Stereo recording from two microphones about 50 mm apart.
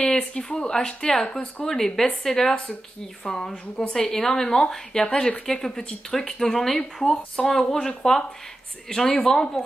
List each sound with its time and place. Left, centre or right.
0.3 s a woman's voice: centre